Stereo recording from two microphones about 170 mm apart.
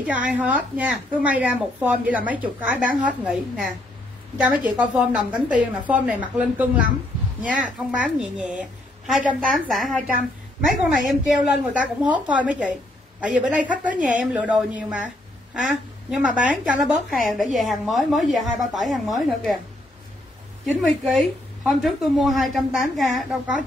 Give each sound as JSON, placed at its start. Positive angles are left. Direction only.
{"t": 0.0, "sound": "a woman's voice", "side_deg": -10}
{"t": 16.1, "sound": "a woman's voice", "side_deg": -10}
{"t": 20.6, "sound": "a woman's voice", "side_deg": 0}